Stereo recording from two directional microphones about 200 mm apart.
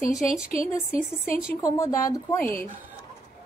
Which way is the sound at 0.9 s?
45° left (ahead or behind).